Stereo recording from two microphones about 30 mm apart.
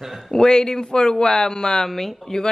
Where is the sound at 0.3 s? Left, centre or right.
Left.